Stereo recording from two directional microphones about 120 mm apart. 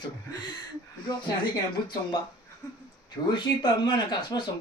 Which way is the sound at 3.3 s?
40° left (ahead or behind).